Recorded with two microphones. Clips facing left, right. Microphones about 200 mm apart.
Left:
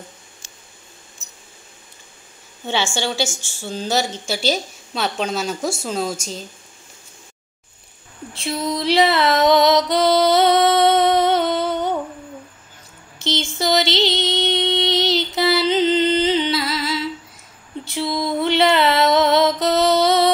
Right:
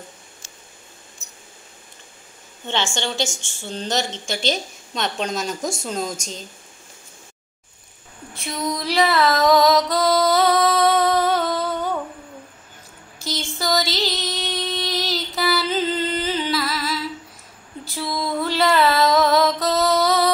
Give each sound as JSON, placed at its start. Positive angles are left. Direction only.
{"t": 2.6, "sound": "a woman's voice", "side_deg": 10}
{"t": 8.4, "sound": "music", "side_deg": 25}
{"t": 13.2, "sound": "music", "side_deg": 25}
{"t": 17.8, "sound": "a sound", "side_deg": 25}